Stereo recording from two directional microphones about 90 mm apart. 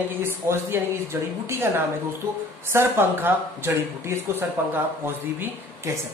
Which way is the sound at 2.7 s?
25° right (ahead or behind).